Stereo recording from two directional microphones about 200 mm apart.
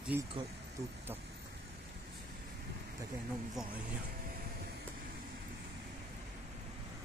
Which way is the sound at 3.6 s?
Centre (ahead or behind).